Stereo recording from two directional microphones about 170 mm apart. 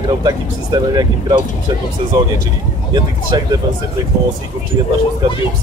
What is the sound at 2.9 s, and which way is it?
Speech, 25° right (ahead or behind).